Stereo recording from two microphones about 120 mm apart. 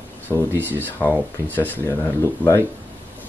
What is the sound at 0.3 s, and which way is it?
Speech, 20° right (ahead or behind).